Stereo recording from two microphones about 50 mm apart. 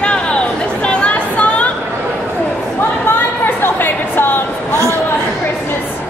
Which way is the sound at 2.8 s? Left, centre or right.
Left.